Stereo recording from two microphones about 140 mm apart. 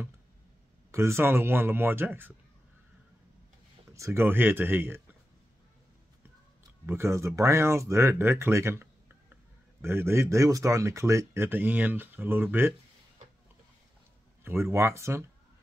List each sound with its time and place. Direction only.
0.9 s speech: 20° right (ahead or behind)
3.9 s speech: 20° right (ahead or behind)
6.9 s speech: 20° right (ahead or behind)
14.4 s speech: 15° right (ahead or behind)